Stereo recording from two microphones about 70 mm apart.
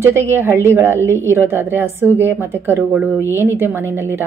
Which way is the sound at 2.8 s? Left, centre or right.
Centre.